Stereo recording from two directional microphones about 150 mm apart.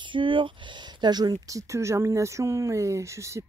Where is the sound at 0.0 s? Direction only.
35° right (ahead or behind).